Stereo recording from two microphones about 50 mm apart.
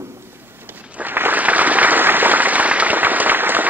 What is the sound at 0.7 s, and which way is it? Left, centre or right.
Applause, right.